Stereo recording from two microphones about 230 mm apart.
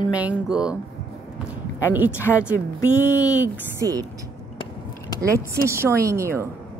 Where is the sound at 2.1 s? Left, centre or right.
Centre.